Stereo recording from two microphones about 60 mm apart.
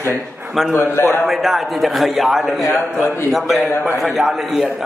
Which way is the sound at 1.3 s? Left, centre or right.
Centre.